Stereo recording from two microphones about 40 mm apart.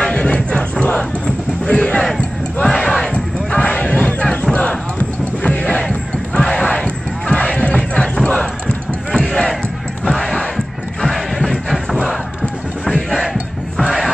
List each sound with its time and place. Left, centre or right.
0.0 s music: left
0.9 s a sound: centre
1.8 s battle cry: left
2.6 s battle cry: centre
3.5 s a sound: left
4.2 s crowd: left
4.6 s music: left
8.3 s basketball bounce: left
11.1 s music: centre
13.2 s music: centre